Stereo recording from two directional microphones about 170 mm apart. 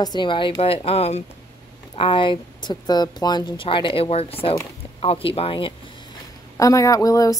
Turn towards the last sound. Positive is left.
turn(degrees=20)  # may be behind; listen again after turning